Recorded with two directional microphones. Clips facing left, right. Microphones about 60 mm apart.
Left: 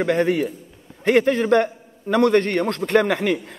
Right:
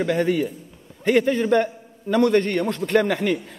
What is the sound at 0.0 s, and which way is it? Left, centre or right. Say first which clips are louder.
Speech: left 2 dB; left.